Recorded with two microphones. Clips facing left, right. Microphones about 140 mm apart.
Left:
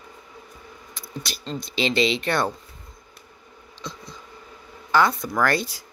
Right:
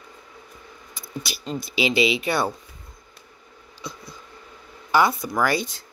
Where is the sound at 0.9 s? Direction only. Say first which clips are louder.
Right 1 dB; 5° right (ahead or behind).